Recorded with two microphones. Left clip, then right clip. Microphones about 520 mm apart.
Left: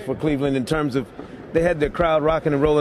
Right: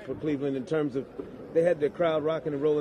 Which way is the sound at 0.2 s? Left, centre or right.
Left.